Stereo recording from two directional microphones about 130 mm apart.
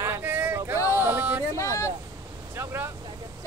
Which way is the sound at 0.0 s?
15° right (ahead or behind).